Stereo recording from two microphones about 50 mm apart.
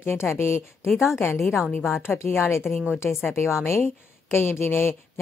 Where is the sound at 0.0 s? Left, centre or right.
Left.